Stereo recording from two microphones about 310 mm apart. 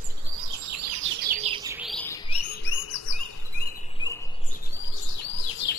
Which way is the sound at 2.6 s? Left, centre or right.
Left.